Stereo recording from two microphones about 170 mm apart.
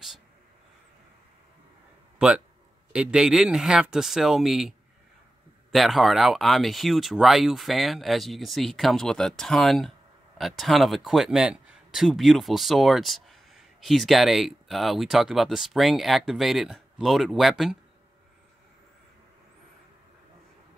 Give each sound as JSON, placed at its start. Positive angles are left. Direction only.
{"t": 2.1, "sound": "speech", "side_deg": -5}